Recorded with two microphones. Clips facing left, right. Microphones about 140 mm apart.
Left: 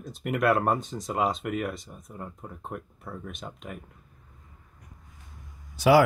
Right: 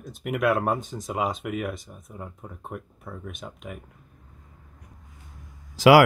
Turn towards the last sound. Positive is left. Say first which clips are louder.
# right 4 dB
turn(degrees=-90)